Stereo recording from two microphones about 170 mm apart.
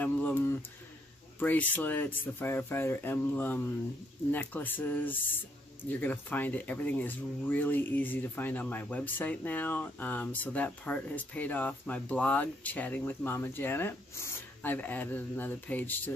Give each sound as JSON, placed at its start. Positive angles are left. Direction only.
{"t": 1.4, "sound": "speech", "side_deg": 10}